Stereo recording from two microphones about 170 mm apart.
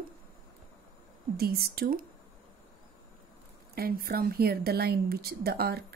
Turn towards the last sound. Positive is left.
turn(degrees=-65)  # may be behind; listen again after turning